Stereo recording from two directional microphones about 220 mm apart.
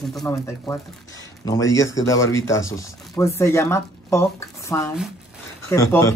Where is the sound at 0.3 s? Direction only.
15° left (ahead or behind).